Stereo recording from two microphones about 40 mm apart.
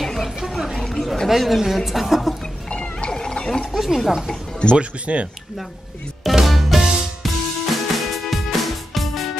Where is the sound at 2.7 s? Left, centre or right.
Left.